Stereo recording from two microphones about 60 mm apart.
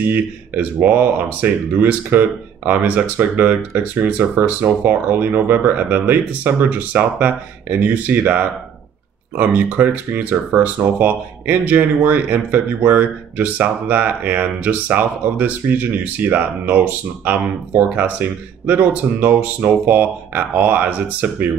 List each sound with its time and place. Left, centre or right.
0.0 s speech: right